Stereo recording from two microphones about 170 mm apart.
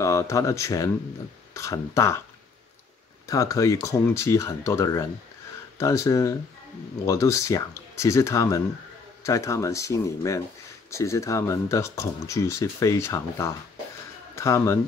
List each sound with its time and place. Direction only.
0.0 s speech: 20° left (ahead or behind)
3.3 s speech: 20° left (ahead or behind)